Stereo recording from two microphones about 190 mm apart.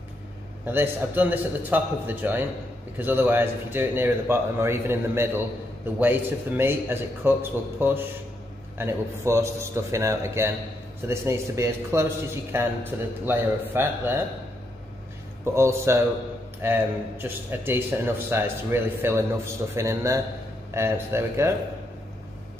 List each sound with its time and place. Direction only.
0.7 s speech: 10° right (ahead or behind)
15.4 s speech: 15° right (ahead or behind)